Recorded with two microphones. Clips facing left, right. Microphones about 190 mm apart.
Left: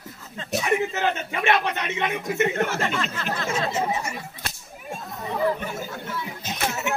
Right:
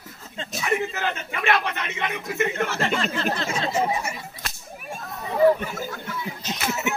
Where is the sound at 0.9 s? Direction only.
20° left (ahead or behind).